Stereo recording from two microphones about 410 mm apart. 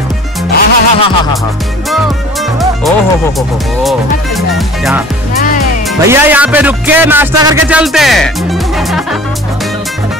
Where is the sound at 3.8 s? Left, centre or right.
Centre.